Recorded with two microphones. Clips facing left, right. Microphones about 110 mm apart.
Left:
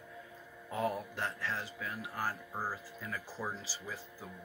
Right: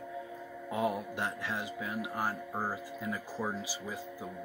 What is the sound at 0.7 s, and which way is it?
Speech, 15° right (ahead or behind).